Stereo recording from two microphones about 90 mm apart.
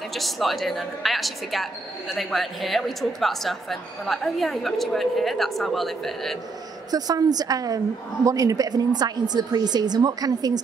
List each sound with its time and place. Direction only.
0.1 s a woman's voice: centre (ahead or behind)
6.9 s a woman's voice: 45° right (ahead or behind)